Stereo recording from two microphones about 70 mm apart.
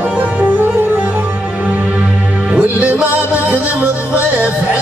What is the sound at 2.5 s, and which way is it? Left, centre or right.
Music, centre.